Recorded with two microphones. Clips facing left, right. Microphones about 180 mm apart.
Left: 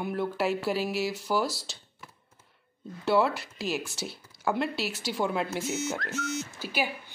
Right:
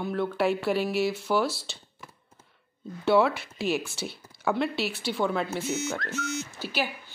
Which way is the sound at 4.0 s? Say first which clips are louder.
Right 2 dB; 65° right (ahead or behind).